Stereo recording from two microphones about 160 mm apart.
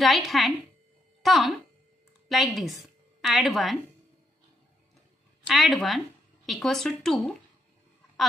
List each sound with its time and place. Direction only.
0.0 s a woman's voice: centre (ahead or behind)
5.5 s speech: centre (ahead or behind)